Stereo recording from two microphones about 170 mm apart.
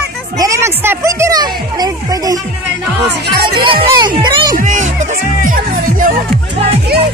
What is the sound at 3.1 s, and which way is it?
Speech, 65° right (ahead or behind).